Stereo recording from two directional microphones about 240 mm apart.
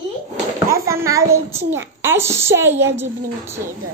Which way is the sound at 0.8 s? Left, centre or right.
Centre.